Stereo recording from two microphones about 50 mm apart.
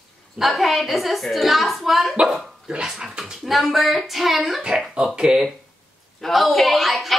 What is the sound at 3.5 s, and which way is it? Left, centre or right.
Speech, centre.